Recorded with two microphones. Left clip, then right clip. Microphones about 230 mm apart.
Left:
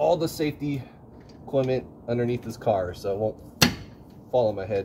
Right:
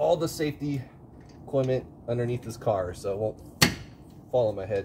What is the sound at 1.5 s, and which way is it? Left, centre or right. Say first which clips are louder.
Speech: left 2 dB; centre.